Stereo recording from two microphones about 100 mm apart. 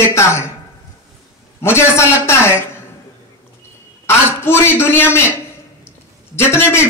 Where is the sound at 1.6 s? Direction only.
25° left (ahead or behind).